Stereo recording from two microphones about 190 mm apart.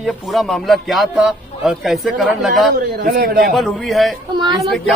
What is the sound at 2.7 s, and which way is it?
Speech, 50° right (ahead or behind).